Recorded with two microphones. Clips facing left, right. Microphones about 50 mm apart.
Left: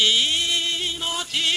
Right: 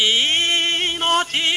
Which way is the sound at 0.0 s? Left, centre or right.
Right.